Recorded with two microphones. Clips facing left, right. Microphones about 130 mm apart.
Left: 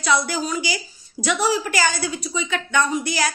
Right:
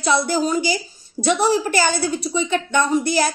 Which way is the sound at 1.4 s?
45° right (ahead or behind).